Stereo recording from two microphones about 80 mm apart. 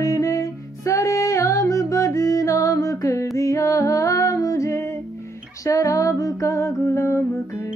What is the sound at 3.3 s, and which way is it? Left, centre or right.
Humming, left.